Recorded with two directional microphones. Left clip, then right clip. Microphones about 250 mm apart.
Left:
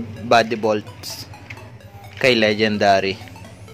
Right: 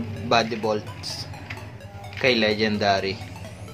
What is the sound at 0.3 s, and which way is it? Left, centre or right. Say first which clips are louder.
Speech: left 6 dB; left.